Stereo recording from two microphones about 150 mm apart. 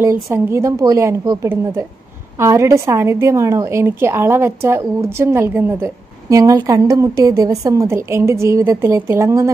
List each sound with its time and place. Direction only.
0.0 s a woman's voice: 15° right (ahead or behind)